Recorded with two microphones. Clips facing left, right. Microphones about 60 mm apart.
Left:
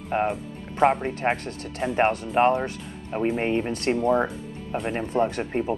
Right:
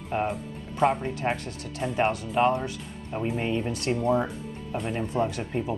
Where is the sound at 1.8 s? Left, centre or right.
Left.